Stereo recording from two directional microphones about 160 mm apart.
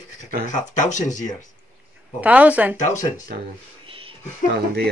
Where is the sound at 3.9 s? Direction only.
35° right (ahead or behind).